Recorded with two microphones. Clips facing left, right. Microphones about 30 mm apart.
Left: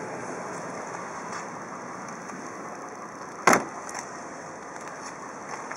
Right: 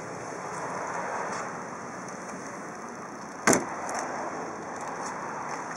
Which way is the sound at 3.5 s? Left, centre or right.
Centre.